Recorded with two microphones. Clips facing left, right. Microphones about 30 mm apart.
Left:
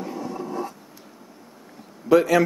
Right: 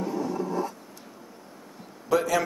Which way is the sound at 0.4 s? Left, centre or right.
Left.